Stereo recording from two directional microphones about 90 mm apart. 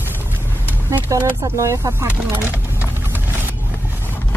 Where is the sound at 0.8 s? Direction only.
25° right (ahead or behind).